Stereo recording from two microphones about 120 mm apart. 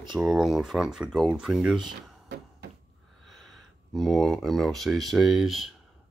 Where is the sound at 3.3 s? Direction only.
Centre (ahead or behind).